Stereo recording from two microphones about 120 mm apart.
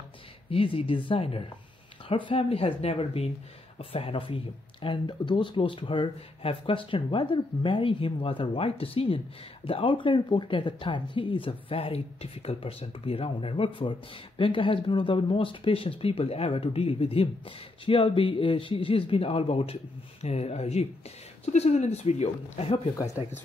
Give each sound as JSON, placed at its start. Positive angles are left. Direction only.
{"t": 0.5, "sound": "speech", "side_deg": 50}
{"t": 22.9, "sound": "speech", "side_deg": 25}